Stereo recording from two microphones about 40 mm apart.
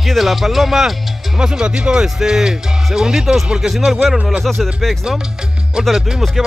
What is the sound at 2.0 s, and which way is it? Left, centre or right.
Speech, centre.